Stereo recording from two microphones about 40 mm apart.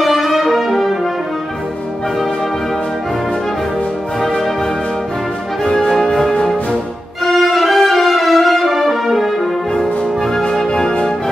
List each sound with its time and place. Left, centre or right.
0.0 s brass instrument: centre
4.2 s music: centre
7.2 s music: centre
9.8 s music: centre